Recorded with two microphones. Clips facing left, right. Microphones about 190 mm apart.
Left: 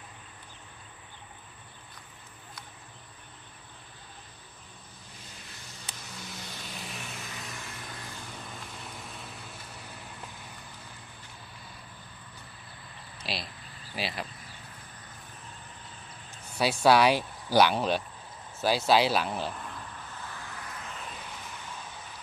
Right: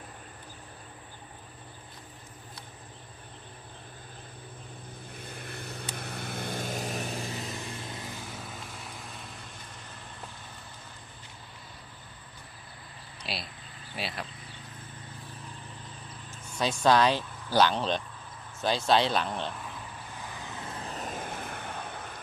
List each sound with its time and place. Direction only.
5.2 s vehicle: 55° right (ahead or behind); by 7.5 s 35° right (ahead or behind)
13.2 s a sound: centre (ahead or behind)
13.9 s speech: centre (ahead or behind)
16.5 s speech: 10° left (ahead or behind)
20.2 s vehicle: 20° right (ahead or behind); by 22.2 s 60° right (ahead or behind)